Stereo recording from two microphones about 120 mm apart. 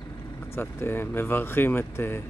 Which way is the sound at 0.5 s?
20° left (ahead or behind).